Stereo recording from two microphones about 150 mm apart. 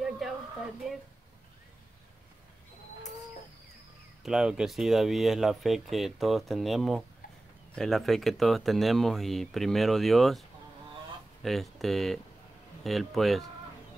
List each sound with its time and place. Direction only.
0.2 s a sound: centre (ahead or behind)
0.8 s speech: 5° right (ahead or behind)
4.2 s speech: 5° right (ahead or behind)
11.4 s speech: centre (ahead or behind)